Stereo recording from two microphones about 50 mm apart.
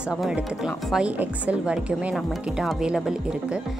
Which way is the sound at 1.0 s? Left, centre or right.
Right.